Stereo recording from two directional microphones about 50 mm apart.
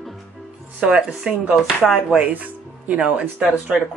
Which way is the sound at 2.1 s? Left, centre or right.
Right.